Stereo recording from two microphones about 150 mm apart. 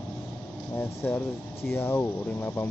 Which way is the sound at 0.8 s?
15° left (ahead or behind).